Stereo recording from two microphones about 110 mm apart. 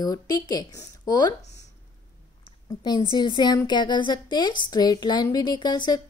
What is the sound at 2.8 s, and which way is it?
A woman's voice, 40° left (ahead or behind).